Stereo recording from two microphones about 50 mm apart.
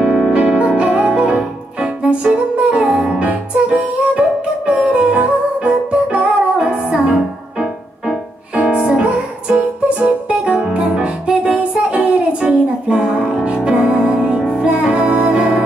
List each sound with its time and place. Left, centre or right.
0.0 s music: centre
8.5 s music: right